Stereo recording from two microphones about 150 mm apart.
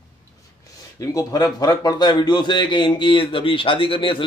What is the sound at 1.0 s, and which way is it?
A man's voice, 25° left (ahead or behind).